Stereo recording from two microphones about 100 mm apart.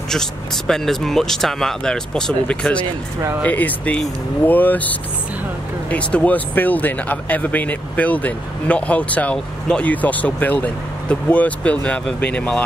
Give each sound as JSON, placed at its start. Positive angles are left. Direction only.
{"t": 0.1, "sound": "speech", "side_deg": 5}